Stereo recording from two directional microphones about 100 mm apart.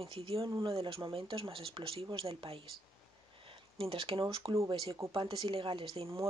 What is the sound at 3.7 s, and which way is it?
Speech, 65° right (ahead or behind).